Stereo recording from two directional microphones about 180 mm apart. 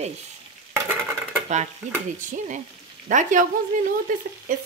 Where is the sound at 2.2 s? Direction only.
45° right (ahead or behind).